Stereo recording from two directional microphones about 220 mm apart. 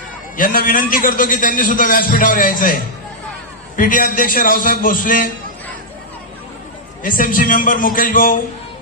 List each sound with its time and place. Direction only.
0.4 s a man's voice: 40° left (ahead or behind)
7.0 s a man's voice: 40° left (ahead or behind)